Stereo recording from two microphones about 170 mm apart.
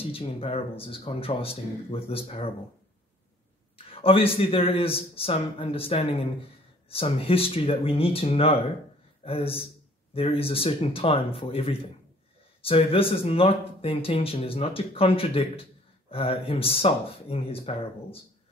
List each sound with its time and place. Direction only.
0.0 s speech: 35° left (ahead or behind)
3.7 s speech: 35° left (ahead or behind)